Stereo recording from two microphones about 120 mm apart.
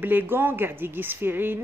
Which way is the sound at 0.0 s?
15° right (ahead or behind).